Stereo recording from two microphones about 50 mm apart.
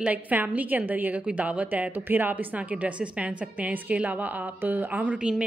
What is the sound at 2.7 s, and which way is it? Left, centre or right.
A woman's voice, right.